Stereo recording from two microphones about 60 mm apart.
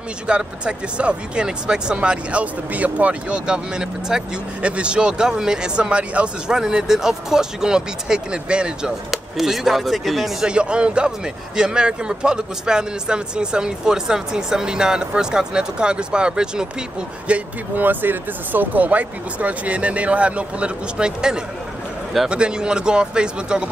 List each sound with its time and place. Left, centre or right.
0.3 s speech: centre
9.1 s speech: centre
10.4 s speech: centre
17.3 s speech: right; by 23.7 s centre